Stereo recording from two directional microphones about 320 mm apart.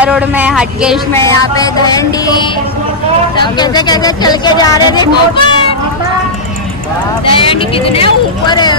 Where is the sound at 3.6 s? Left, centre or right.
Centre.